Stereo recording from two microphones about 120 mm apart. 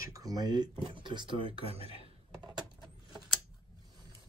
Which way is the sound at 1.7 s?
55° right (ahead or behind).